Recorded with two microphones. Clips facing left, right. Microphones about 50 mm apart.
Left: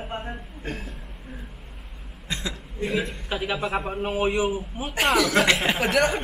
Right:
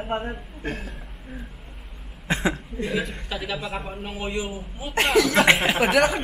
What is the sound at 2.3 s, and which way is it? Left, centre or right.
Cough, right.